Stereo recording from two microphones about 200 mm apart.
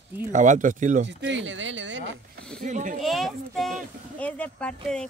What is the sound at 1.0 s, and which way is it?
Speech, 70° right (ahead or behind).